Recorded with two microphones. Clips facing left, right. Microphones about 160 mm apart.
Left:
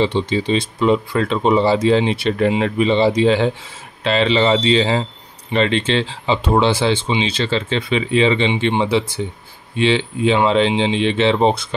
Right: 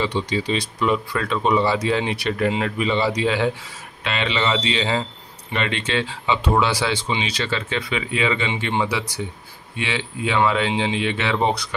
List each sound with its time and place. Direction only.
0.0 s speech: 25° left (ahead or behind)